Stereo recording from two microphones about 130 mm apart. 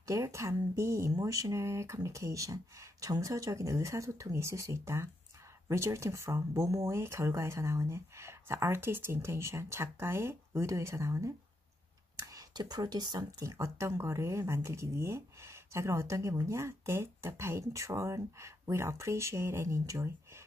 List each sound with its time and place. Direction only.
0.0 s speech: 25° right (ahead or behind)